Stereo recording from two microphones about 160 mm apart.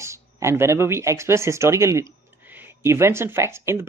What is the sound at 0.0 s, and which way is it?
Speech, 15° right (ahead or behind).